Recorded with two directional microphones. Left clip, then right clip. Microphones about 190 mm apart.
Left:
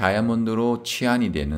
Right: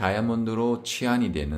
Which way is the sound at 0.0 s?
30° left (ahead or behind).